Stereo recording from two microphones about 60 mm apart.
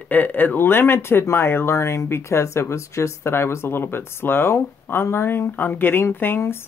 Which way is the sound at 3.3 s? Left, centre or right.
Left.